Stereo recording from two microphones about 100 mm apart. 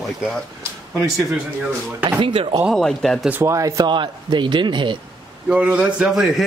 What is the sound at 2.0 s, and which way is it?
Speech, 55° right (ahead or behind).